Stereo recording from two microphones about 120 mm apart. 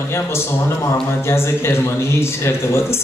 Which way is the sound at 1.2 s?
20° left (ahead or behind).